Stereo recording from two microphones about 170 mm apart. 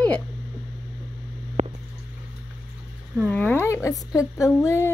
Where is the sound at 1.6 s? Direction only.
40° right (ahead or behind).